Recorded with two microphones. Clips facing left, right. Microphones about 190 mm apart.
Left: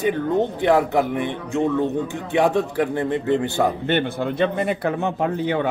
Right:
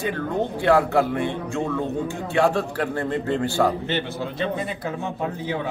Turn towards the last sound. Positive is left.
turn(degrees=65)  # may be behind; listen again after turning